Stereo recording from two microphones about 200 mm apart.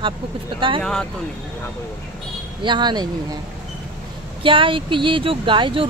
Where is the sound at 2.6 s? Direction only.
20° right (ahead or behind).